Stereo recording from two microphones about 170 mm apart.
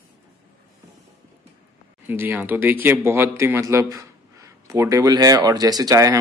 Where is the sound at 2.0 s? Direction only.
10° right (ahead or behind).